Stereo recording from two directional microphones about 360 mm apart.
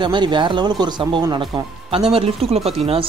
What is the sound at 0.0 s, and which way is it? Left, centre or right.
Speech, centre.